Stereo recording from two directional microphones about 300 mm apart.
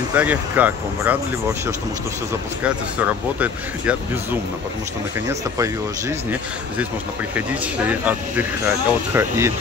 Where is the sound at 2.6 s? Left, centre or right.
Centre.